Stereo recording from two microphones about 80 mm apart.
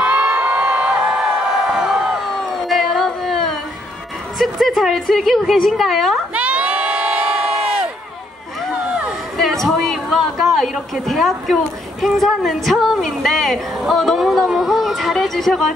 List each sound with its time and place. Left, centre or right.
0.0 s crowd: centre
4.4 s a woman's voice: centre
6.3 s crowd: centre
8.8 s a sound: centre
9.4 s a woman's voice: centre